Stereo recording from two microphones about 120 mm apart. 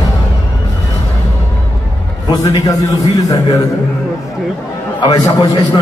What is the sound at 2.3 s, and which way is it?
Speech, 30° left (ahead or behind).